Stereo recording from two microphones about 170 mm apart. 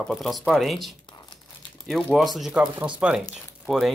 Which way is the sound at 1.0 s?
25° left (ahead or behind).